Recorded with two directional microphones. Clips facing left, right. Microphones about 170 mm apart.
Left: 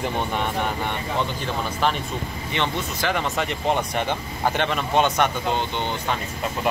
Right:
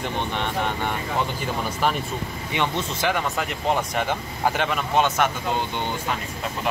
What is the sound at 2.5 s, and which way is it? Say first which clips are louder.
Speech: right 1 dB; 10° right (ahead or behind).